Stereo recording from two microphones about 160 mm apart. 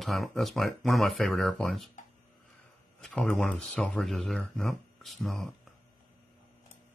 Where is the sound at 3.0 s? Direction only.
5° left (ahead or behind).